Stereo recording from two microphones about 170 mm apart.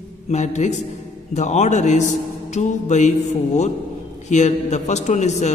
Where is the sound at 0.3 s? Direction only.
45° left (ahead or behind).